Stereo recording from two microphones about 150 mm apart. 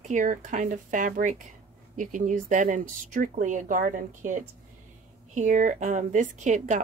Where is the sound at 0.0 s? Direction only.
55° right (ahead or behind).